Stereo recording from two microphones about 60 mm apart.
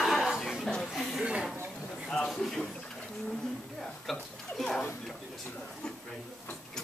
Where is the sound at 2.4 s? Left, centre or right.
Centre.